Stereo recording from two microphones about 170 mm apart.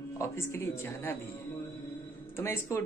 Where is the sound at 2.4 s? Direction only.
15° left (ahead or behind).